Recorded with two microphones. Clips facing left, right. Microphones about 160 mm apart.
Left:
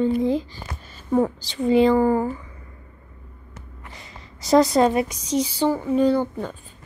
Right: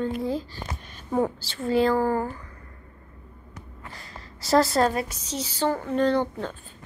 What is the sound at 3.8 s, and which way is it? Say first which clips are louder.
Gasp: right 1 dB; 20° left (ahead or behind).